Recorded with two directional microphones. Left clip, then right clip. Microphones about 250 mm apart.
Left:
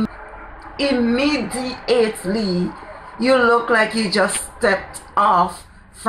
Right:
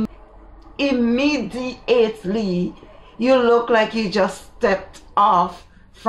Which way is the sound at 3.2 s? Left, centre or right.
Centre.